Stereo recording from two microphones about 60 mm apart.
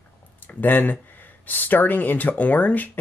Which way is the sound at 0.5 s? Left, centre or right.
Left.